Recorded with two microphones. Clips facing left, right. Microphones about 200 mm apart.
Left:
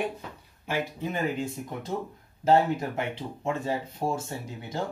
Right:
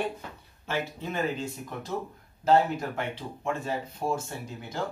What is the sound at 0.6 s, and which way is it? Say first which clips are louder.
Speech: left 2 dB; 15° left (ahead or behind).